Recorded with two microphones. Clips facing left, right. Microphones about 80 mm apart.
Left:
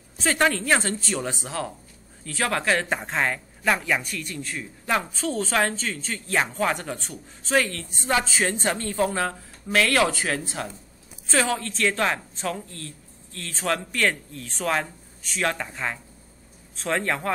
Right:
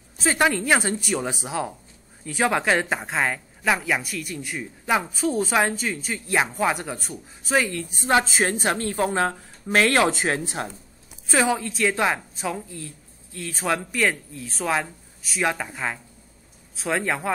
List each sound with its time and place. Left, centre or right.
0.2 s speech: centre
2.9 s speech: centre
9.0 s speech: right
11.2 s a man's voice: centre